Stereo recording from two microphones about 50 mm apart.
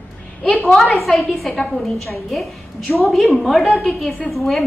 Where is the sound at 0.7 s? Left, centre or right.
Centre.